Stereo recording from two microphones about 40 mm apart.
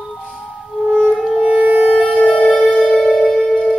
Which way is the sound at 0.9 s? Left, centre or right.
Right.